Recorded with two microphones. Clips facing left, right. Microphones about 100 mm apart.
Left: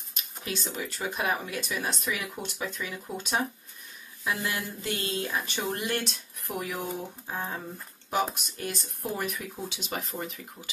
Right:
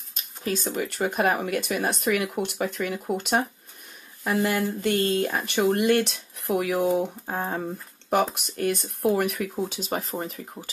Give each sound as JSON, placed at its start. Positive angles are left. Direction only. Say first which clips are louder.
{"t": 0.1, "sound": "a sound", "louder": "right 7 dB", "side_deg": -40}
{"t": 0.7, "sound": "speech", "louder": "right 7 dB", "side_deg": -60}
{"t": 7.2, "sound": "speech", "louder": "right 6 dB", "side_deg": -50}
{"t": 9.7, "sound": "speech", "louder": "right 6 dB", "side_deg": -40}